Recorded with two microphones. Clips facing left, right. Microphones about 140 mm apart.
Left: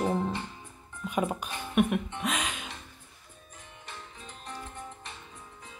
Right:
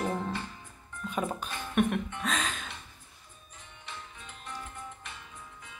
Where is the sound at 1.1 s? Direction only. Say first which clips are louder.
Left 3 dB; 15° left (ahead or behind).